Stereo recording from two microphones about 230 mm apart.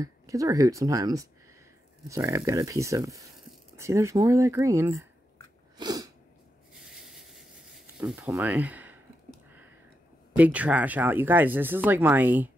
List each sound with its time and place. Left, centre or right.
0.0 s speech: centre
5.8 s sneeze: centre
6.8 s writing: centre
7.8 s a sound: centre
10.3 s speech: centre